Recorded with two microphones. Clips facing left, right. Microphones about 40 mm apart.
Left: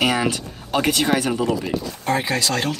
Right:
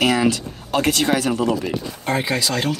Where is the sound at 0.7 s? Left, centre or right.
Centre.